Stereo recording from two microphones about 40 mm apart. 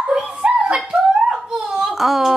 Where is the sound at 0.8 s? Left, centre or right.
Centre.